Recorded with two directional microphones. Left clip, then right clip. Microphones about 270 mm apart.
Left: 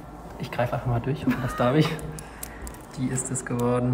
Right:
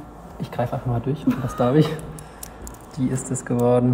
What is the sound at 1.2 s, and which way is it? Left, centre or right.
Speech, left.